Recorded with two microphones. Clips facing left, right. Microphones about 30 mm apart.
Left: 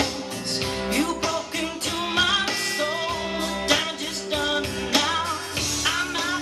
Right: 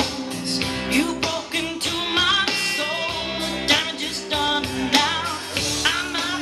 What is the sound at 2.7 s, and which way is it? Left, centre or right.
Music, right.